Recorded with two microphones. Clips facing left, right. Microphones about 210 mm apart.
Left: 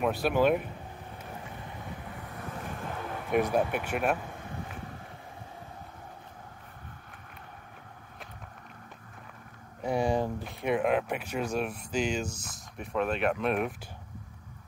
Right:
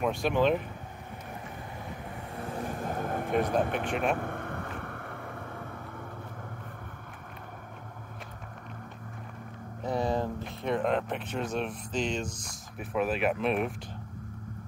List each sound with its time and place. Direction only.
0.0 s speech: 5° left (ahead or behind)
2.9 s a sound: 50° right (ahead or behind)
3.3 s speech: 10° left (ahead or behind)
4.2 s vehicle: 60° right (ahead or behind)
9.8 s speech: 15° left (ahead or behind)
12.7 s speech: 5° right (ahead or behind)